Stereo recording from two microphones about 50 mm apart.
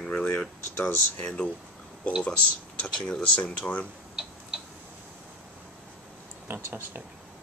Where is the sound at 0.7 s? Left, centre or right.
Left.